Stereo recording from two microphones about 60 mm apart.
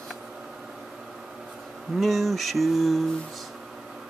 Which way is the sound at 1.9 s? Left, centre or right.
Centre.